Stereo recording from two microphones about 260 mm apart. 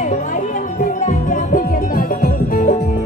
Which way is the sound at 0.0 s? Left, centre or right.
Left.